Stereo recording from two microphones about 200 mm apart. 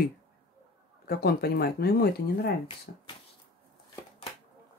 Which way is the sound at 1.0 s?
50° left (ahead or behind).